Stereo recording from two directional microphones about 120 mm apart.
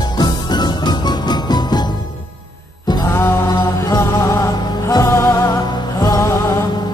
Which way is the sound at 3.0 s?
20° left (ahead or behind).